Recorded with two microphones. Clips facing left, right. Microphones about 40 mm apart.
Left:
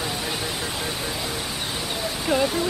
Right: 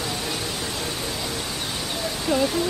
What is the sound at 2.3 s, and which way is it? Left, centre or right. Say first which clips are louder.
Speech: even; centre.